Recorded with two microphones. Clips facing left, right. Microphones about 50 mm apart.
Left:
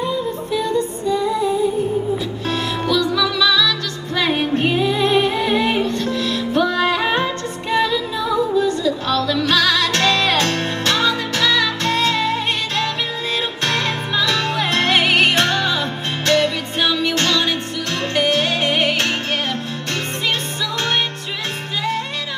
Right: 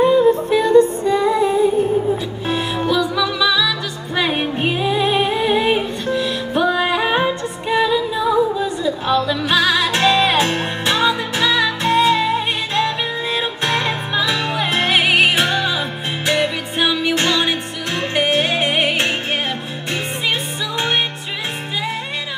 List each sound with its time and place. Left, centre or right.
0.0 s music: right
2.4 s music: centre